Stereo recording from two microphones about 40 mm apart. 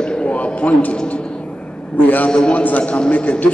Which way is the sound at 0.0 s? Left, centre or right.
Left.